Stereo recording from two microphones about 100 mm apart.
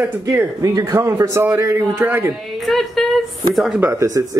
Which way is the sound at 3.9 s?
30° right (ahead or behind).